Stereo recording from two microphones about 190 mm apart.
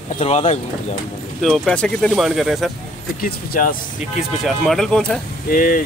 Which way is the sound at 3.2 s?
45° left (ahead or behind).